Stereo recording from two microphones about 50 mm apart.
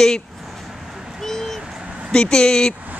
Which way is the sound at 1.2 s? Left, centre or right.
Centre.